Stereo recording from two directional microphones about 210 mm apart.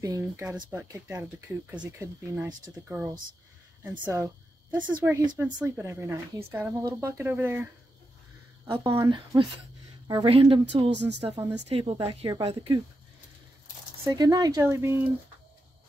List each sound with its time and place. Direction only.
0.0 s a woman's voice: 15° right (ahead or behind)
4.0 s a woman's voice: 10° right (ahead or behind)
8.6 s speech: 20° right (ahead or behind)
10.9 s speech: 55° right (ahead or behind)
11.1 s speech: 20° right (ahead or behind)
14.0 s a woman's voice: 15° right (ahead or behind)